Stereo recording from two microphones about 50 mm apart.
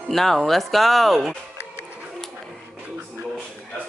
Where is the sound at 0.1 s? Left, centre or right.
Centre.